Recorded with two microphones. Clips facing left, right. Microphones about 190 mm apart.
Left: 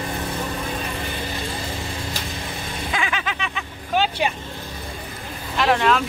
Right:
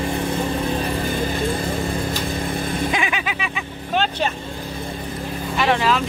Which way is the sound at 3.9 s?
5° left (ahead or behind).